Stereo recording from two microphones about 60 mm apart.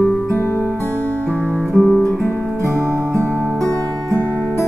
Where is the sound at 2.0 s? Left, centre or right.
Left.